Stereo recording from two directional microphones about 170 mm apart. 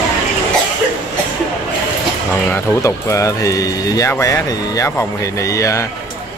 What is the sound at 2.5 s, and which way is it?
Speech, 15° left (ahead or behind).